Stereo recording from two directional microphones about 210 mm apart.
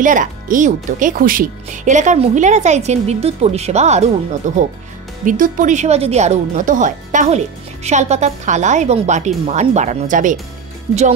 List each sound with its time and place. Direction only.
0.0 s speech: 40° right (ahead or behind)